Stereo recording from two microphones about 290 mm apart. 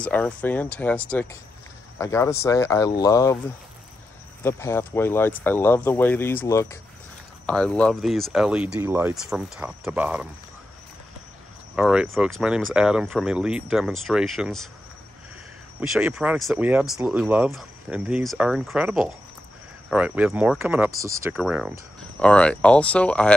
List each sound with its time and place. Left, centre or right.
0.0 s speech: centre
4.4 s speech: centre
11.7 s speech: centre
15.9 s speech: centre